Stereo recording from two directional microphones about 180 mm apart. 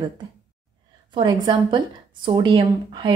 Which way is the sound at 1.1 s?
25° right (ahead or behind).